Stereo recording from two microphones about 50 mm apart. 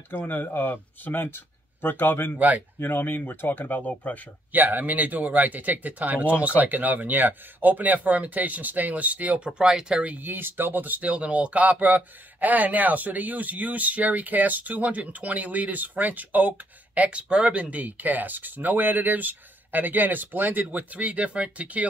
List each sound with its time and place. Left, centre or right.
0.1 s speech: left
2.3 s speech: right
2.8 s speech: left
4.5 s speech: right; by 10.1 s centre
10.1 s speech: right